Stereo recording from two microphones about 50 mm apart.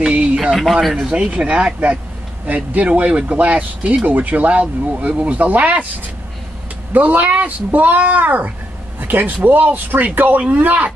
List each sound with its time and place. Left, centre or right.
0.1 s a sound: right
1.1 s speech: right
6.9 s speech: right